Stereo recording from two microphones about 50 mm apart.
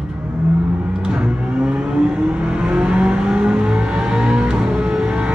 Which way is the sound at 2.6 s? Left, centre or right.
Centre.